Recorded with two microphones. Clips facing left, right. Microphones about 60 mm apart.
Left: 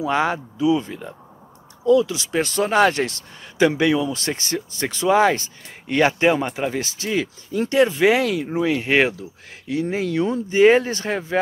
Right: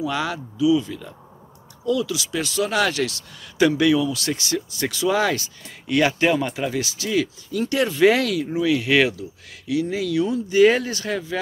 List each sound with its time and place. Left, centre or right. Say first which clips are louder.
0.0 s speech: left 4 dB; left
1.9 s speech: left 6 dB; left
3.5 s speech: even; left
6.8 s speech: right 1 dB; left
7.7 s speech: left 1 dB; centre; by 11.3 s left